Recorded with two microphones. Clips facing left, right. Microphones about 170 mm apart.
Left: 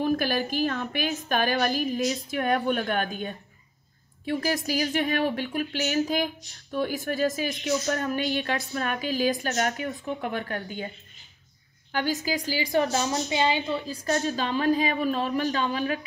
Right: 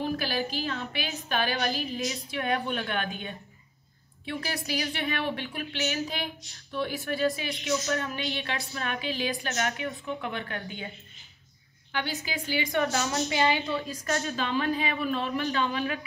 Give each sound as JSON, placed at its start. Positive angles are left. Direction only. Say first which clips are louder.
{"t": 0.0, "sound": "a sound", "louder": "left 5 dB", "side_deg": 45}
{"t": 0.5, "sound": "a woman's voice", "louder": "left 6 dB", "side_deg": 45}
{"t": 11.9, "sound": "a woman's voice", "louder": "left 6 dB", "side_deg": 40}